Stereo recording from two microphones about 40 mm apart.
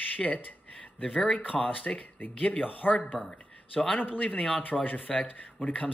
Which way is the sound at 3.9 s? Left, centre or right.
Left.